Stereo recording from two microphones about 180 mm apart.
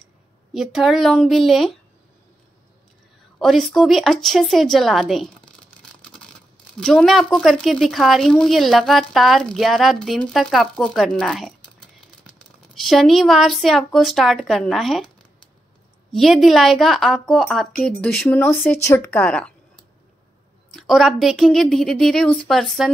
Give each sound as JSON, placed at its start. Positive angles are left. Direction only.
{"t": 0.5, "sound": "a woman's voice", "side_deg": 0}
{"t": 3.3, "sound": "a woman's voice", "side_deg": 0}
{"t": 12.7, "sound": "a woman's voice", "side_deg": 0}
{"t": 16.1, "sound": "a woman's voice", "side_deg": 0}
{"t": 20.7, "sound": "a woman's voice", "side_deg": 0}